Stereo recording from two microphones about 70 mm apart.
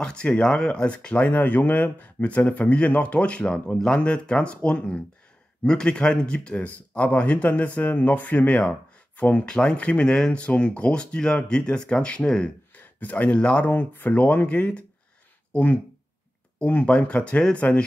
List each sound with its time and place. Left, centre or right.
0.0 s speech: centre